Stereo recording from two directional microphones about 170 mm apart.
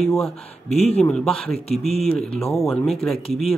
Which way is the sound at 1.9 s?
35° left (ahead or behind).